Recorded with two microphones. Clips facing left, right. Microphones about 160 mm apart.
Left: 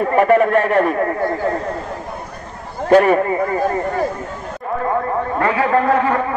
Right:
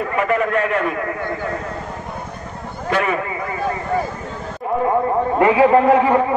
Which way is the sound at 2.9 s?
45° left (ahead or behind).